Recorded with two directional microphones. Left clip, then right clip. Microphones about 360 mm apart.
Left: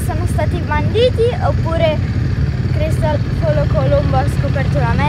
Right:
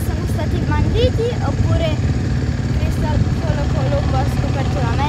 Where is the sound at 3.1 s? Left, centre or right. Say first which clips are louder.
Left 6 dB; right.